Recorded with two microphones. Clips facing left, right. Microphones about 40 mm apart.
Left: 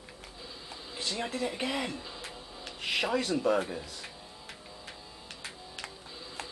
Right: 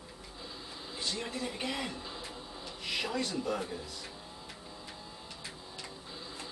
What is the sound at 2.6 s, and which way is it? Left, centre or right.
Speech, left.